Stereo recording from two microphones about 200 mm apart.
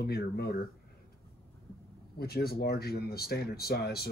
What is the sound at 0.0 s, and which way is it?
Speech, 50° left (ahead or behind).